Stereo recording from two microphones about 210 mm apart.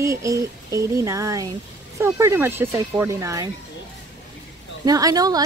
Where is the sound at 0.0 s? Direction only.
15° right (ahead or behind).